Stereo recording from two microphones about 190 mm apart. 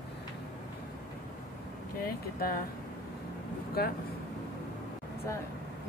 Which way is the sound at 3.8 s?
55° left (ahead or behind).